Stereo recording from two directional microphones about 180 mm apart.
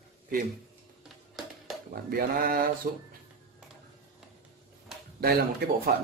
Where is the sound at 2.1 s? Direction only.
55° right (ahead or behind).